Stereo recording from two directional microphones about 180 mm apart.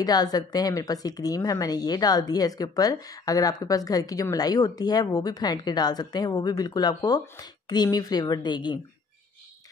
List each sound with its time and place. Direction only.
0.0 s a woman's voice: 20° left (ahead or behind)